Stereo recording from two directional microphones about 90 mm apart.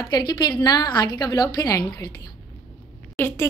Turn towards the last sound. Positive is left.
turn(degrees=25)  # may be behind; listen again after turning